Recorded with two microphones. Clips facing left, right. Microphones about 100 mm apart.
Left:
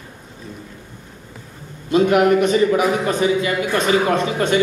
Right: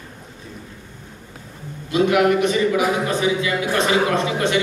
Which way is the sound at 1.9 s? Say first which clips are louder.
Left 2 dB; 45° left (ahead or behind).